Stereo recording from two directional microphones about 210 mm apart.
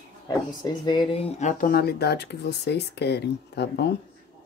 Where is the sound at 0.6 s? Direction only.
20° left (ahead or behind); by 3.9 s 55° left (ahead or behind).